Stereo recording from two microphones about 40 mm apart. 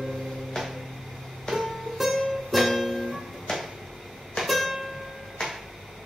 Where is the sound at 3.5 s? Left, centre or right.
Centre.